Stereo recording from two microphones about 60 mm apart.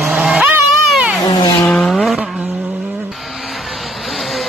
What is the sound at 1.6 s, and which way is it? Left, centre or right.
Vehicle, left.